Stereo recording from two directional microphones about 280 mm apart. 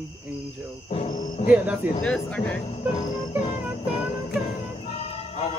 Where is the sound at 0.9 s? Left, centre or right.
Left.